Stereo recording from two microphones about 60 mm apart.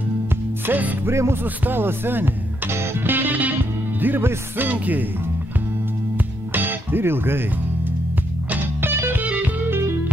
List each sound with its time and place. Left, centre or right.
0.7 s music: right
1.0 s music: right
1.4 s music: right
6.5 s music: right
8.5 s music: right
9.2 s music: right
9.7 s music: right